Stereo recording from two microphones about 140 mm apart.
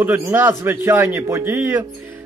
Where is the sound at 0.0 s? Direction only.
15° right (ahead or behind).